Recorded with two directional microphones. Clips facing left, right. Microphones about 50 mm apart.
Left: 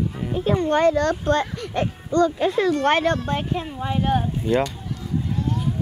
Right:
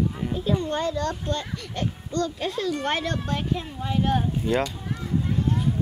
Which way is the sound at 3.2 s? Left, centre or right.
Centre.